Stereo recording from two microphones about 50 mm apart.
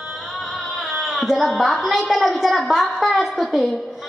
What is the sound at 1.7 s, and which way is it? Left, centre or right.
A woman's voice, centre.